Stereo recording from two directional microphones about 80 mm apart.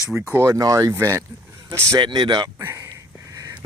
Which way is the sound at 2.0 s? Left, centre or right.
Right.